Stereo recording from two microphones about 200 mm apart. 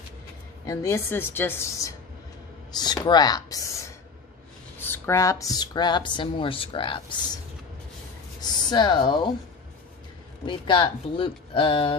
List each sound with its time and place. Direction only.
0.7 s a woman's voice: 15° left (ahead or behind)
8.4 s speech: 20° left (ahead or behind)
10.4 s speech: 25° left (ahead or behind)